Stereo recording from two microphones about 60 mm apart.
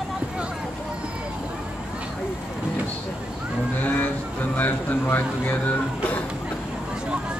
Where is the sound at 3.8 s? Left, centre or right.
Left.